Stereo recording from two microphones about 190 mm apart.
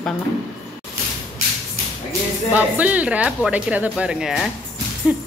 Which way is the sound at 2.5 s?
10° right (ahead or behind).